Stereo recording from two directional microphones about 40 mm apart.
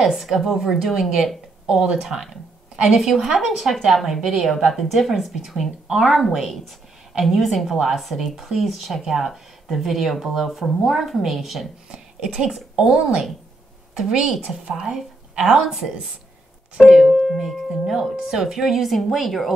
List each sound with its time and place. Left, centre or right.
0.0 s a woman's voice: centre
11.9 s a sound: centre
14.4 s a woman's voice: centre
17.0 s speech: centre